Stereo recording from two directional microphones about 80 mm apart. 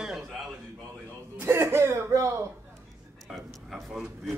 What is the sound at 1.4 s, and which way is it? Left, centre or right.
Speech, right.